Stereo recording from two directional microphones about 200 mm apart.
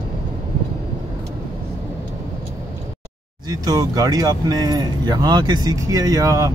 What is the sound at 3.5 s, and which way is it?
Speech, 20° right (ahead or behind).